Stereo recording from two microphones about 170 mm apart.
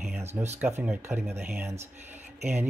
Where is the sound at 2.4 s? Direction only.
10° right (ahead or behind).